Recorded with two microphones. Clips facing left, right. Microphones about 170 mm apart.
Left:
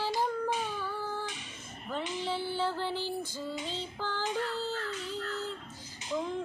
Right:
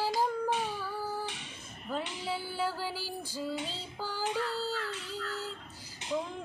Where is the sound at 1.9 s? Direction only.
10° right (ahead or behind).